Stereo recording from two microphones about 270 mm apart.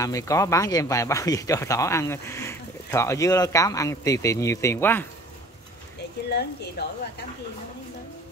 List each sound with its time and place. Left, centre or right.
0.0 s speech: centre
6.3 s speech: left